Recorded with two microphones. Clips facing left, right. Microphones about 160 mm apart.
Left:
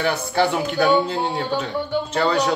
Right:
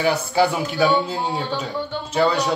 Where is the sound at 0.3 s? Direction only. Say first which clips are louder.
Right 1 dB; 5° right (ahead or behind).